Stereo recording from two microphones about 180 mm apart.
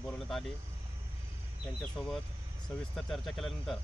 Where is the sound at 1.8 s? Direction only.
Centre (ahead or behind).